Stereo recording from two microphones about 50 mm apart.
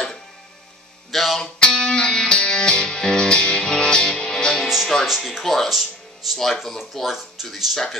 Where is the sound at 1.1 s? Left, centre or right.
Centre.